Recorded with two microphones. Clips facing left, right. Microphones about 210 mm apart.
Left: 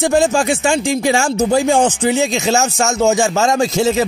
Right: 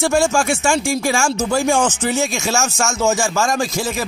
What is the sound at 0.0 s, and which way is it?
Speech, 20° left (ahead or behind).